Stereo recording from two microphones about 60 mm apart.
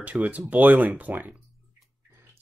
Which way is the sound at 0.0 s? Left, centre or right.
Right.